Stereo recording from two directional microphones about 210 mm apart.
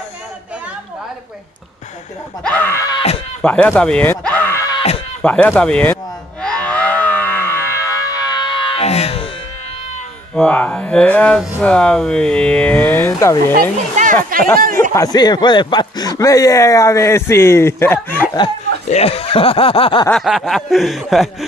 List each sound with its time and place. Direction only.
2.4 s speech: 10° left (ahead or behind)
2.9 s speech: 25° left (ahead or behind)
3.4 s a sound: 5° left (ahead or behind)
5.2 s speech: 5° left (ahead or behind)
6.4 s music: 5° left (ahead or behind); by 9.3 s 30° left (ahead or behind)
10.3 s speech: 5° left (ahead or behind)
13.6 s a sound: 35° right (ahead or behind)
14.6 s speech: 40° right (ahead or behind)
15.0 s speech: 20° left (ahead or behind)
18.4 s speech: 30° left (ahead or behind)
20.1 s speech: centre (ahead or behind)